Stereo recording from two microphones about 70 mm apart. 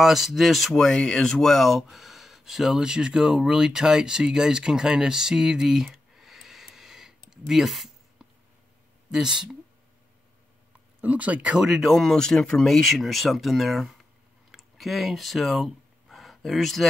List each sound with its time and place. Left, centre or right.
0.0 s speech: centre
11.0 s speech: right
11.5 s speech: centre
14.5 s a sound: centre